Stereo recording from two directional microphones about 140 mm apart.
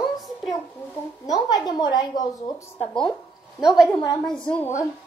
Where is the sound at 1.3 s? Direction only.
30° left (ahead or behind).